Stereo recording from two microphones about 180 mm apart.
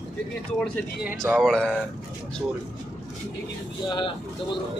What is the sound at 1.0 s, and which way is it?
Speech, 5° right (ahead or behind).